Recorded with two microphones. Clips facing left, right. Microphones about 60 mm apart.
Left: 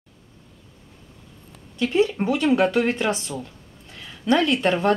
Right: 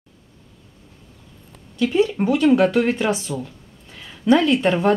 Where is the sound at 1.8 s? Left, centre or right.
Centre.